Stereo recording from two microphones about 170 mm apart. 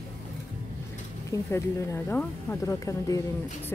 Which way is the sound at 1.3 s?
15° left (ahead or behind).